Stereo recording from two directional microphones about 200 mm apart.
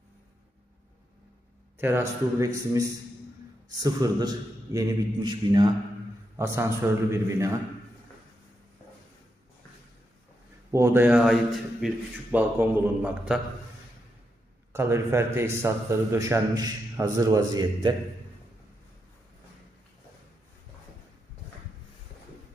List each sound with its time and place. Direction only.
1.8 s a man's voice: 10° right (ahead or behind)
3.6 s mantra: 20° right (ahead or behind)
6.3 s a man's voice: 15° right (ahead or behind)
10.7 s a man's voice: 15° right (ahead or behind)
14.7 s a man's voice: 15° right (ahead or behind)